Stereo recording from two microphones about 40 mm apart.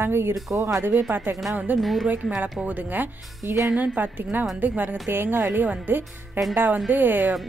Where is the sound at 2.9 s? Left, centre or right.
Right.